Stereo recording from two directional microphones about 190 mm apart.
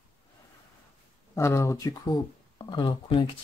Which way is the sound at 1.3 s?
15° left (ahead or behind).